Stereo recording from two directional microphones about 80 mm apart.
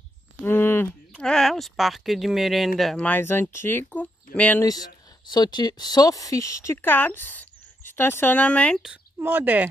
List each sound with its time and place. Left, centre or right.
0.5 s speech: left
1.1 s speech: centre
3.1 s speech: left
5.3 s speech: left; by 8.7 s centre
9.2 s speech: right